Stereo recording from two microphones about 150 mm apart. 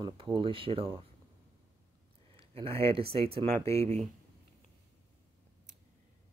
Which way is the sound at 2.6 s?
40° right (ahead or behind).